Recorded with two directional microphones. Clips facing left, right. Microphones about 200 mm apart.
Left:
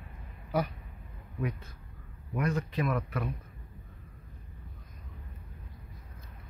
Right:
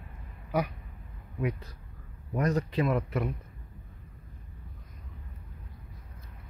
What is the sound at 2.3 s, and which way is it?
Speech, 40° right (ahead or behind).